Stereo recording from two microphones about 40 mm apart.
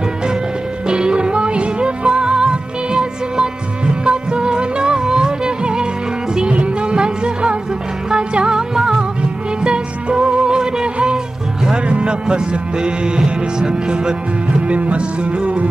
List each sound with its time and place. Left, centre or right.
0.8 s music: right
14.7 s music: right